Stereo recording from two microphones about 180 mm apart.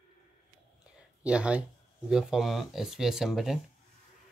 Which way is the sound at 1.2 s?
5° right (ahead or behind).